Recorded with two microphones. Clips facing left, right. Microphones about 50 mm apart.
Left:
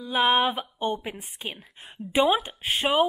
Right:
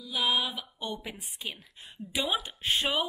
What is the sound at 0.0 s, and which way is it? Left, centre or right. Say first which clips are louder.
Speech: left 8 dB; left.